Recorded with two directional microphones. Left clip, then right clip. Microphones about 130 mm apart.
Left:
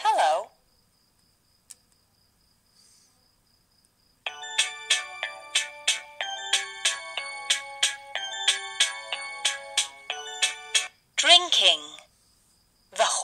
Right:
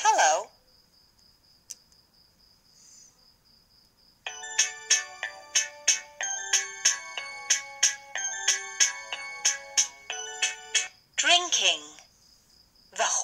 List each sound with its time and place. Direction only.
0.0 s cricket: 10° left (ahead or behind)
4.2 s music: 45° left (ahead or behind)
12.9 s cricket: 45° left (ahead or behind)